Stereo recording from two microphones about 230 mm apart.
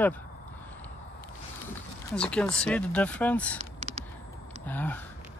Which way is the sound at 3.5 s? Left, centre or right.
Right.